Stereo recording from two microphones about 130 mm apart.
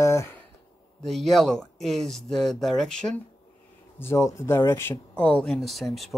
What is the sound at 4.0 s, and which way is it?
Speech, 20° left (ahead or behind).